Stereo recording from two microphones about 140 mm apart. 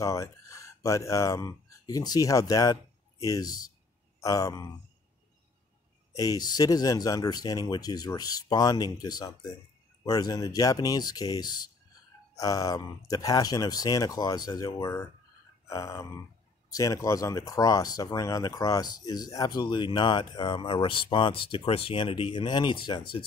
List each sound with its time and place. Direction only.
0.0 s speech: 20° left (ahead or behind)
6.1 s speech: 25° left (ahead or behind)